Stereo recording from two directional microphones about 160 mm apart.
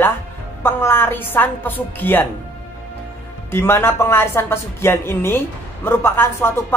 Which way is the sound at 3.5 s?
15° left (ahead or behind).